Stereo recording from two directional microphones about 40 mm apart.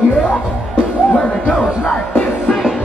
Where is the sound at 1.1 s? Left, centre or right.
Left.